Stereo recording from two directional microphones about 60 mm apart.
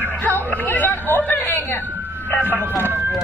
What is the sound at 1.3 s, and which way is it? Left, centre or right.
A woman's voice, left.